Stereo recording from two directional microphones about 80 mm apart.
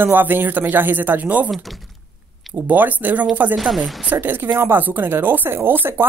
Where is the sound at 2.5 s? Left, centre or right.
Right.